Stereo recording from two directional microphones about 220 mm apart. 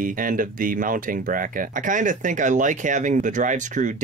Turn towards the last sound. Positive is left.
turn(degrees=-35)  # may be behind; listen again after turning